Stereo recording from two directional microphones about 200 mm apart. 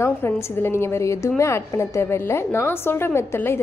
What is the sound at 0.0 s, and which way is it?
A woman's voice, 10° left (ahead or behind).